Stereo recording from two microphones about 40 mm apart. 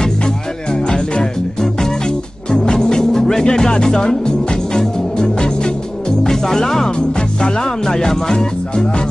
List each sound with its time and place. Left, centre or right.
0.8 s music: centre